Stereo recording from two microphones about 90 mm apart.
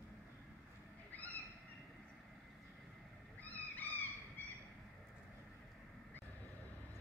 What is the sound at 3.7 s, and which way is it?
Vehicle, 20° left (ahead or behind).